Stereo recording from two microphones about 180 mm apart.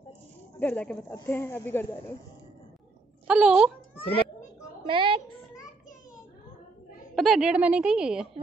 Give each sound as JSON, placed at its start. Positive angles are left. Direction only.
{"t": 0.6, "sound": "speech", "side_deg": 10}
{"t": 3.3, "sound": "a woman's voice", "side_deg": -5}
{"t": 4.8, "sound": "a woman's voice", "side_deg": -30}
{"t": 7.2, "sound": "a woman's voice", "side_deg": 0}